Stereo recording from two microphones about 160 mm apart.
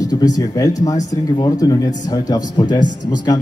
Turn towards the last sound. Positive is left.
turn(degrees=25)  # may be behind; listen again after turning